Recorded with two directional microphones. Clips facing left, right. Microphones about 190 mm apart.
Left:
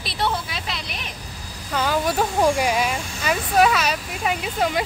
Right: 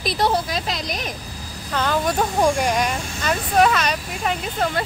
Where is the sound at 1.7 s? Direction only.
5° left (ahead or behind).